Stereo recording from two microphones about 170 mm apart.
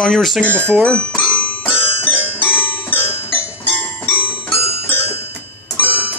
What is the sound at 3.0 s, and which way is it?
Music, 35° left (ahead or behind).